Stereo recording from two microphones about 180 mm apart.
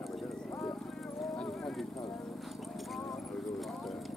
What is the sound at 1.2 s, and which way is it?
Clip-clop, centre (ahead or behind).